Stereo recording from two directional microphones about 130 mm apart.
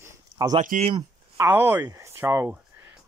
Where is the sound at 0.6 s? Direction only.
70° right (ahead or behind).